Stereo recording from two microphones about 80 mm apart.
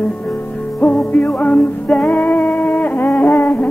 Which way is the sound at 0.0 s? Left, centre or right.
Centre.